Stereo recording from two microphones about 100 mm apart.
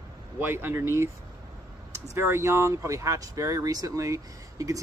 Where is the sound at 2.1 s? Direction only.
25° right (ahead or behind).